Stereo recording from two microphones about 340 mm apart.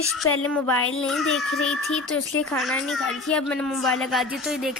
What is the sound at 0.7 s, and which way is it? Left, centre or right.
Speech, left.